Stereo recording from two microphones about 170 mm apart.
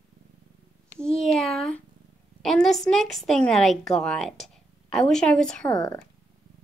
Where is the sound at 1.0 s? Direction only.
Centre (ahead or behind).